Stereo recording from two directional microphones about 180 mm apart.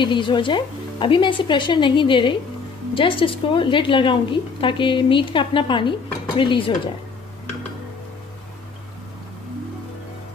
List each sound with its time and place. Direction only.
0.0 s a woman's voice: 25° left (ahead or behind)